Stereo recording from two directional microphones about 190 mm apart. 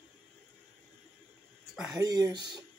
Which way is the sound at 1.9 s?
20° right (ahead or behind).